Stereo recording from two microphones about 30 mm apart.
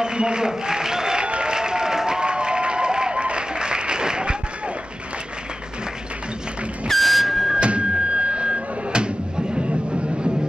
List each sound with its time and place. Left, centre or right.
0.0 s a man's voice: right
1.2 s applause: right
1.5 s applause: right
6.9 s air horn: centre
7.2 s a sound: centre
7.6 s a sound: right